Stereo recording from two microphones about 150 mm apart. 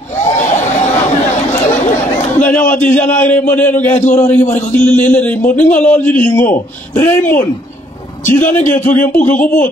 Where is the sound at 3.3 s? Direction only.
10° left (ahead or behind).